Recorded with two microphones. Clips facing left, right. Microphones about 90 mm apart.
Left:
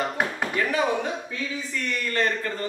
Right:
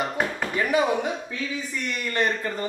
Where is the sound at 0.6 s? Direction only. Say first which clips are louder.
Right 2 dB; 15° right (ahead or behind).